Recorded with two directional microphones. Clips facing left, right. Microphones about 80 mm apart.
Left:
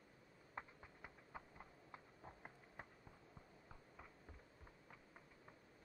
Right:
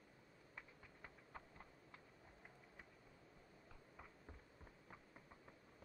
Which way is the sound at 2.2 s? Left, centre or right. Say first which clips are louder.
Left 5 dB; left.